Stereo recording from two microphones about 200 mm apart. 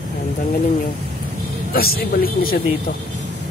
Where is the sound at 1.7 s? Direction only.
50° left (ahead or behind).